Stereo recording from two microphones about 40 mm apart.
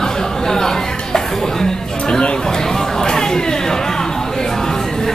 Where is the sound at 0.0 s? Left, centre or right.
Centre.